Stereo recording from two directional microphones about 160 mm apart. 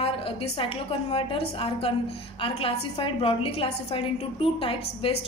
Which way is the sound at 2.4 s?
35° left (ahead or behind).